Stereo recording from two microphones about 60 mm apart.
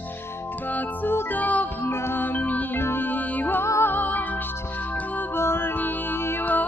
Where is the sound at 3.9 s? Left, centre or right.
Left.